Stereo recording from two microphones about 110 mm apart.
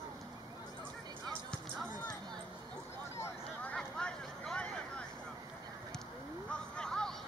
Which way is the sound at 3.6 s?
10° left (ahead or behind).